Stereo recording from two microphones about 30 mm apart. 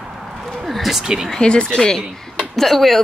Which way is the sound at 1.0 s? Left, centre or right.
Centre.